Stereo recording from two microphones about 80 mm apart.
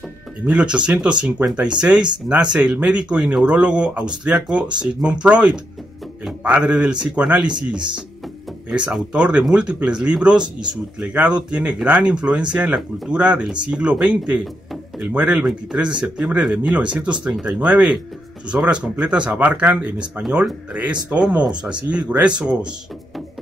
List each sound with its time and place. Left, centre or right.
0.5 s speech: centre
14.4 s a sound: centre
15.0 s speech: centre